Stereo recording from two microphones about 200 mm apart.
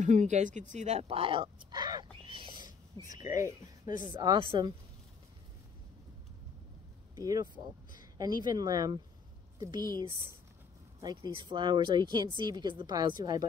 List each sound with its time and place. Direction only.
0.0 s speech: 35° right (ahead or behind)
7.2 s speech: 15° right (ahead or behind)